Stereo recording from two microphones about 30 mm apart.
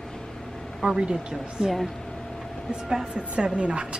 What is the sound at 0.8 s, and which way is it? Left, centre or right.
Speech, right.